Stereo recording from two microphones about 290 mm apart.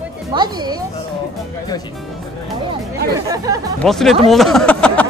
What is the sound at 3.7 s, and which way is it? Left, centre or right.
Speech, centre.